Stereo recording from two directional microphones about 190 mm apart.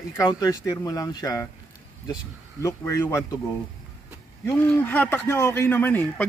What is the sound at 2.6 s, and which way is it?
Speech, 15° left (ahead or behind).